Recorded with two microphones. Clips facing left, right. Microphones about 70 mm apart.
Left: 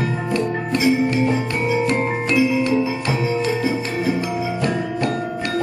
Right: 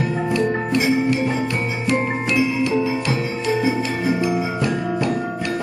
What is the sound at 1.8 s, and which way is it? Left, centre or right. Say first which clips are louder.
Music: left 1 dB; left.